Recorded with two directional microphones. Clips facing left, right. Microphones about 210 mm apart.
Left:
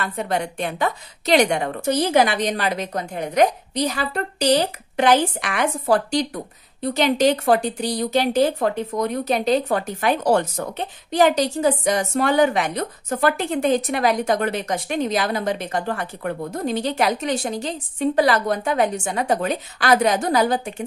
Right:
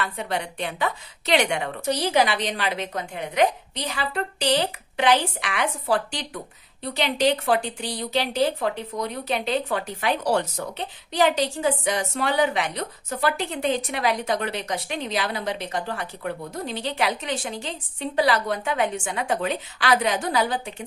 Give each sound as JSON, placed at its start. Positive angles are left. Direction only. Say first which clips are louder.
{"t": 0.0, "sound": "a woman's voice", "louder": "left 4 dB", "side_deg": 45}